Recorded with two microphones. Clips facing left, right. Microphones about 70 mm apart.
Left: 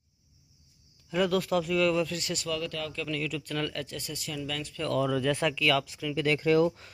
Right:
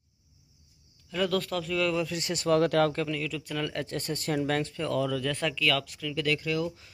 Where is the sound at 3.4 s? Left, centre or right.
Centre.